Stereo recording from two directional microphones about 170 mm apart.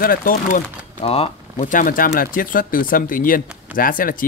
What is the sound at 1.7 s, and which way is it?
Speech, 55° left (ahead or behind).